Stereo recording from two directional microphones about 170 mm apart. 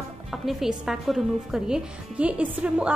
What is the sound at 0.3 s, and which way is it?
A woman's voice, centre (ahead or behind).